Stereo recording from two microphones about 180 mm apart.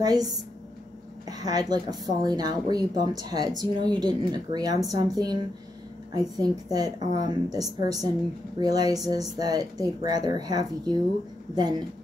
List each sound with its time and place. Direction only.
0.0 s a woman's voice: 20° right (ahead or behind)